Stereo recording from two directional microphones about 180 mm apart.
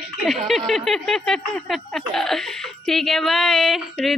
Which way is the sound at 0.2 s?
Centre (ahead or behind).